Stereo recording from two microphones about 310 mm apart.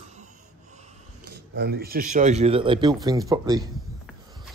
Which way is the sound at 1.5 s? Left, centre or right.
Right.